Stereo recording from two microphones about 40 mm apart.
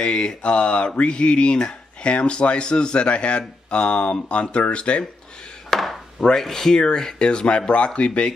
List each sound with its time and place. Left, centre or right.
0.0 s speech: left
5.7 s chop: centre
6.3 s speech: centre; by 8.3 s left